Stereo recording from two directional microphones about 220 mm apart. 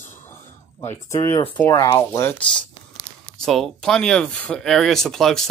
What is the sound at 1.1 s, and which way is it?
Speech, 15° left (ahead or behind).